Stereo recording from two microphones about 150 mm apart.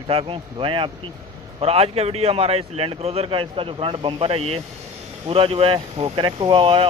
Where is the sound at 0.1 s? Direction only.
40° right (ahead or behind).